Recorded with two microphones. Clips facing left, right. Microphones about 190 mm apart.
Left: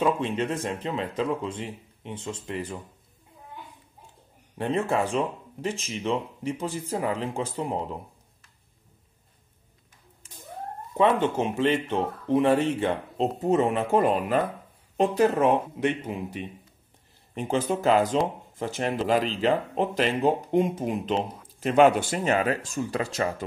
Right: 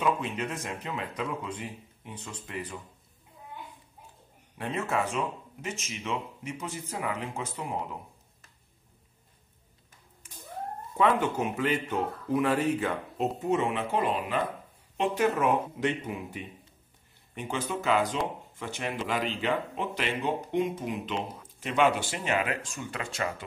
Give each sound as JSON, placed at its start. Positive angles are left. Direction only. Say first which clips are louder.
{"t": 0.0, "sound": "speech", "louder": "left 4 dB", "side_deg": 30}
{"t": 4.6, "sound": "speech", "louder": "left 5 dB", "side_deg": 30}
{"t": 11.0, "sound": "speech", "louder": "left 3 dB", "side_deg": 25}
{"t": 13.4, "sound": "speech", "louder": "left 6 dB", "side_deg": 40}
{"t": 15.0, "sound": "speech", "louder": "left 5 dB", "side_deg": 35}
{"t": 17.3, "sound": "speech", "louder": "left 7 dB", "side_deg": 35}